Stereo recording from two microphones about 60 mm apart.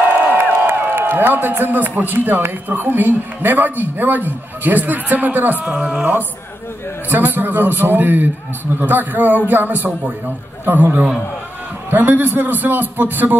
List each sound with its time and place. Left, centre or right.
0.2 s crowd: right
0.6 s a man's voice: right; by 6.0 s centre
7.1 s a man's voice: right